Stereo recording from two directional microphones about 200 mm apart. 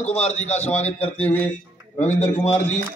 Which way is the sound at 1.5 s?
35° left (ahead or behind).